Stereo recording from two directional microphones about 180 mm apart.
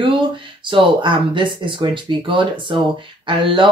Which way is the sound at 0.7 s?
30° right (ahead or behind).